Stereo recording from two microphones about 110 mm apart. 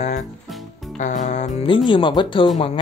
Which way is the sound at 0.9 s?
90° left.